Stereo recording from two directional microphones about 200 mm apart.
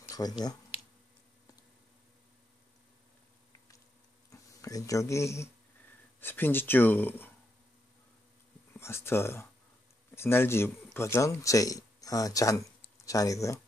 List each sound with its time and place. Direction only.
0.1 s speech: 20° left (ahead or behind)
4.3 s speech: 15° left (ahead or behind)
8.7 s speech: 10° left (ahead or behind)